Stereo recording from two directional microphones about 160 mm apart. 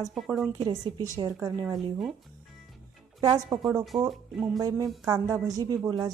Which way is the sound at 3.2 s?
25° right (ahead or behind).